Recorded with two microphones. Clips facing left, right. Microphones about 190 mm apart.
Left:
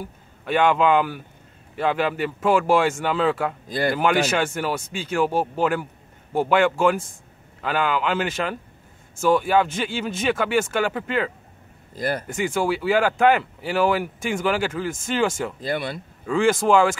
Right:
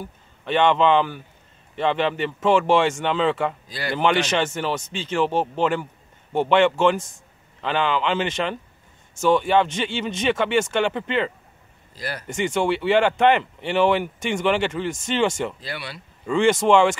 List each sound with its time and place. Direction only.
0.0 s a man's voice: 5° left (ahead or behind)
3.6 s speech: 50° left (ahead or behind)
3.9 s speech: 5° left (ahead or behind)
11.9 s speech: 50° left (ahead or behind)
12.3 s speech: 5° left (ahead or behind)
15.6 s speech: 50° left (ahead or behind)
16.3 s speech: 5° left (ahead or behind)